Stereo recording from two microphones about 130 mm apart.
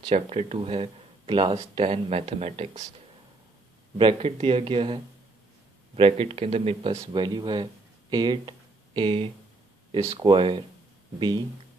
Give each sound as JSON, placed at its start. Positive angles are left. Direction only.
{"t": 0.1, "sound": "speech", "side_deg": -55}
{"t": 4.0, "sound": "speech", "side_deg": -45}
{"t": 7.1, "sound": "speech", "side_deg": -35}